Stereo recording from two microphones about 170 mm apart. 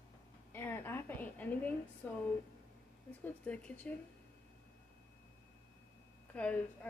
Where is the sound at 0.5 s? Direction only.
10° left (ahead or behind).